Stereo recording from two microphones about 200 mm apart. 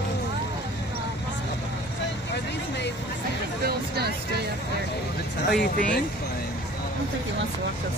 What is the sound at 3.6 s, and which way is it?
Speech, 50° right (ahead or behind).